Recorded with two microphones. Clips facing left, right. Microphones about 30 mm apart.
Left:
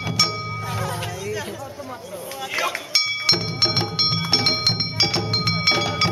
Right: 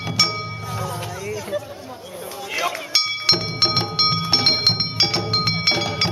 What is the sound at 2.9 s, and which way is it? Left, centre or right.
Music, centre.